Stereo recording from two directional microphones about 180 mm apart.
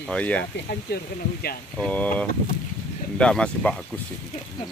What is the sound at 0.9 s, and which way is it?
Speech, 65° left (ahead or behind).